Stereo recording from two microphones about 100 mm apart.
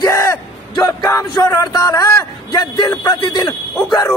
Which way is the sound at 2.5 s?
40° left (ahead or behind).